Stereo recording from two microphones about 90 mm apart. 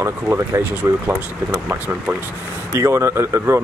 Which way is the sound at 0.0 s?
30° right (ahead or behind).